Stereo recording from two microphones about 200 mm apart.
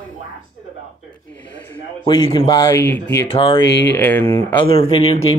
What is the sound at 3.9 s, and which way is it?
Speech, 10° left (ahead or behind).